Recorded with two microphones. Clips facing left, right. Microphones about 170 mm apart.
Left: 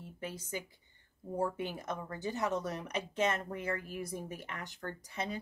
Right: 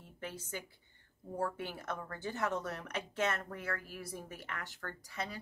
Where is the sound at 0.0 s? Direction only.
10° left (ahead or behind).